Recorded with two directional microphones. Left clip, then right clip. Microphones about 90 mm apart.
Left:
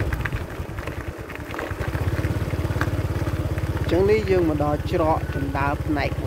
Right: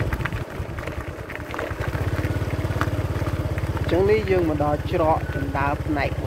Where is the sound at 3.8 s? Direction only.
35° left (ahead or behind).